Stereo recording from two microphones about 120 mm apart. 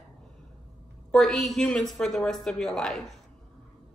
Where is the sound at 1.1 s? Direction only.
Centre (ahead or behind).